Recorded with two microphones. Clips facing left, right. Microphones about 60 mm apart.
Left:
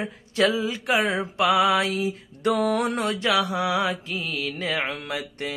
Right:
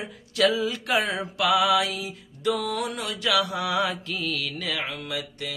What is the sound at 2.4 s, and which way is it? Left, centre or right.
Mantra, left.